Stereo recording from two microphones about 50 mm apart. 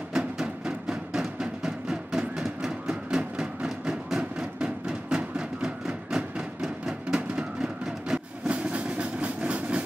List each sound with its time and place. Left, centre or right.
0.1 s music: centre
3.1 s a sound: centre
8.5 s vehicle: right